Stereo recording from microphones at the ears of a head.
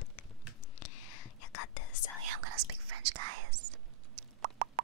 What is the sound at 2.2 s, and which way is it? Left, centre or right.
Whispering, right.